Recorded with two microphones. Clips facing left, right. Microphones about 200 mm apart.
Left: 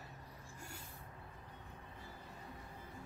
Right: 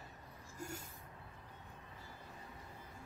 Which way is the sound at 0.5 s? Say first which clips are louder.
Right 9 dB; 45° right (ahead or behind).